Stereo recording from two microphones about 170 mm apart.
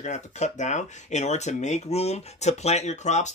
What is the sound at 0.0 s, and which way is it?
Speech, 45° left (ahead or behind).